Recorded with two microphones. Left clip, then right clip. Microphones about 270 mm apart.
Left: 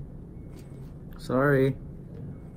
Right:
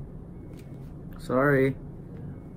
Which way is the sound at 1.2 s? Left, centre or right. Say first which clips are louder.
Right 1 dB; centre.